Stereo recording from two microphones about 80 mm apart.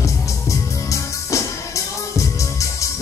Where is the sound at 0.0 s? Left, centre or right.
Left.